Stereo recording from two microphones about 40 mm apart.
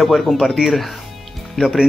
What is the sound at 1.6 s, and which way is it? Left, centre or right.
Speech, left.